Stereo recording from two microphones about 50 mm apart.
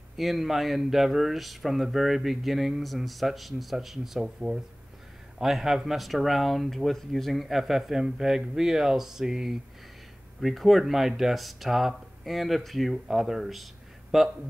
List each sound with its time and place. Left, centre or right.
0.2 s speech: centre
10.4 s speech: centre